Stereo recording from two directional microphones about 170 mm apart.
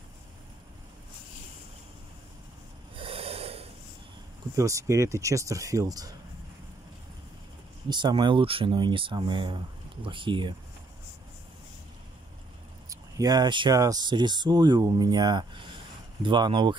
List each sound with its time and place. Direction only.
3.0 s snort: 35° right (ahead or behind)
4.6 s speech: 20° right (ahead or behind)
7.9 s speech: 25° right (ahead or behind)
12.9 s speech: 20° right (ahead or behind)